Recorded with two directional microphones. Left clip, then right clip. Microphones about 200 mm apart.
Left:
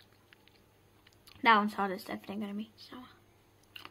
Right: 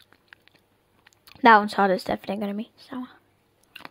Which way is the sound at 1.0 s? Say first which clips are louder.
Right 10 dB; 55° right (ahead or behind).